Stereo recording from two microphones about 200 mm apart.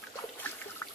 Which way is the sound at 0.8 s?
10° left (ahead or behind).